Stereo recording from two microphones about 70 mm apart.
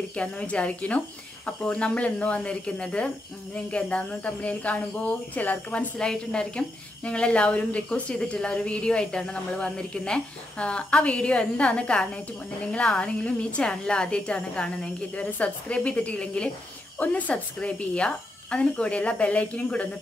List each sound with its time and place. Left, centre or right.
0.1 s a woman's voice: centre
5.9 s a woman's voice: centre